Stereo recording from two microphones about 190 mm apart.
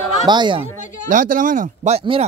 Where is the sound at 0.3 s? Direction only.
25° right (ahead or behind).